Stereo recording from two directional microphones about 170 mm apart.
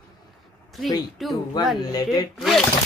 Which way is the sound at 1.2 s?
Centre (ahead or behind).